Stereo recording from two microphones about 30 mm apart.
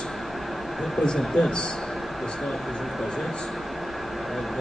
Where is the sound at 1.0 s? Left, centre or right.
Left.